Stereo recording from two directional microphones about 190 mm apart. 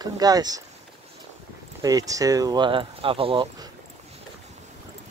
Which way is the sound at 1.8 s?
20° right (ahead or behind).